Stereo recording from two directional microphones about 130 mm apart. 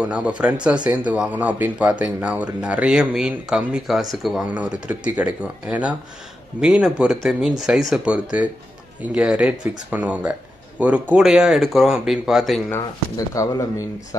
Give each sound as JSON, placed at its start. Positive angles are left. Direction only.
{"t": 0.0, "sound": "speech", "side_deg": -10}
{"t": 13.3, "sound": "speech", "side_deg": 25}